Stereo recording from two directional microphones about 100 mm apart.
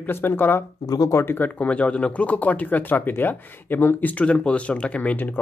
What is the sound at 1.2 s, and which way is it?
Speech, 20° left (ahead or behind).